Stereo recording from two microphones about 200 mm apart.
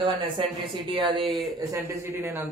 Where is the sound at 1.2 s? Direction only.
Centre (ahead or behind).